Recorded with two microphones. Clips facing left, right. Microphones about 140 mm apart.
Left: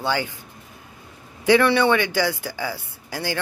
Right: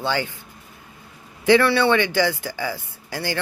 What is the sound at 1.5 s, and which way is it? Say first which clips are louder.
Speech: even; 15° left (ahead or behind).